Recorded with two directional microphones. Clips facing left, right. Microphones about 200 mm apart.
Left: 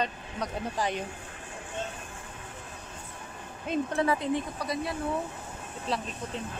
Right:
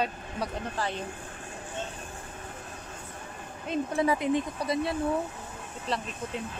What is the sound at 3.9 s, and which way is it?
Speech, 15° right (ahead or behind).